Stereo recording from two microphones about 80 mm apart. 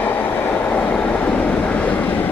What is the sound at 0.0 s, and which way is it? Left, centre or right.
Train, left.